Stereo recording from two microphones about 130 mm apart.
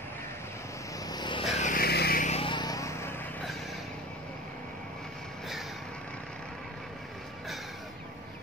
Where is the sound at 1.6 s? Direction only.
80° left.